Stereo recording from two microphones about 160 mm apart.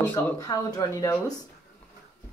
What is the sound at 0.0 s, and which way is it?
Speech, 20° left (ahead or behind).